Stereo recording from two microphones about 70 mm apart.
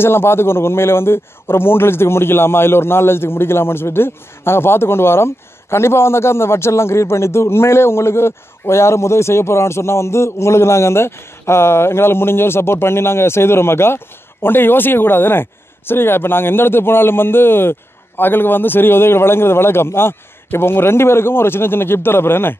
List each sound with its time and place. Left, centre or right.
0.0 s a man's voice: left